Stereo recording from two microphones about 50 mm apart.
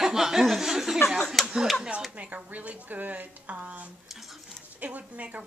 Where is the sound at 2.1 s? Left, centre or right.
Right.